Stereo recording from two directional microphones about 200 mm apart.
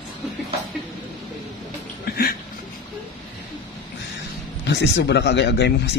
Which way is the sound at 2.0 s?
50° left (ahead or behind).